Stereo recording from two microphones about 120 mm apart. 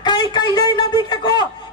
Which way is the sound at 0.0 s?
35° left (ahead or behind).